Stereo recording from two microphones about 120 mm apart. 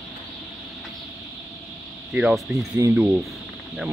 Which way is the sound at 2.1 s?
5° right (ahead or behind).